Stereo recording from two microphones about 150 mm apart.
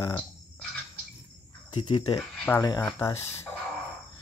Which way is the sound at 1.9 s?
30° left (ahead or behind).